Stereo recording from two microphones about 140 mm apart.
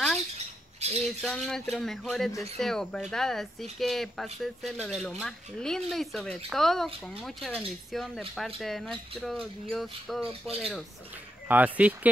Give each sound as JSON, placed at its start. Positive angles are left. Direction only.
{"t": 0.7, "sound": "squawk", "side_deg": -50}
{"t": 1.2, "sound": "speech", "side_deg": 5}
{"t": 11.4, "sound": "speech", "side_deg": -10}